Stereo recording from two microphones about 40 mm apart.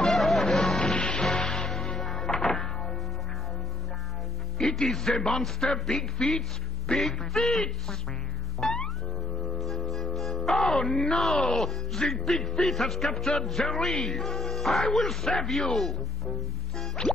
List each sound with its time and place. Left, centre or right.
0.0 s music: centre
4.6 s a man's voice: centre
6.9 s music: centre
7.3 s a man's voice: centre
8.6 s music: centre
11.3 s a man's voice: centre
12.1 s music: centre
17.0 s music: centre